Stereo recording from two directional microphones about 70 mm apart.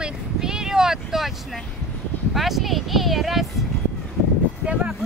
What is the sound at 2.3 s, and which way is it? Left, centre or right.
Speech, centre.